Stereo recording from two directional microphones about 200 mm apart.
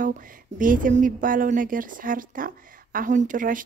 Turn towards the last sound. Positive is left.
turn(degrees=-40)  # may be behind; listen again after turning